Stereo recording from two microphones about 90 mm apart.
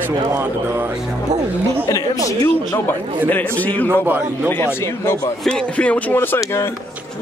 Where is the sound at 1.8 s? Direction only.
40° left (ahead or behind).